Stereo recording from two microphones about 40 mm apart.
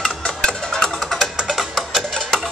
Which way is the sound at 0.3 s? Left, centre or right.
Left.